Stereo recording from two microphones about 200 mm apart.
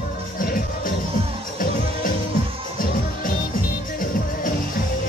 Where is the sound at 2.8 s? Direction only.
45° left (ahead or behind).